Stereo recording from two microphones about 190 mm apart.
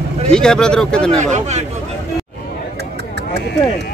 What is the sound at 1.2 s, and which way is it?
Speech, 35° right (ahead or behind).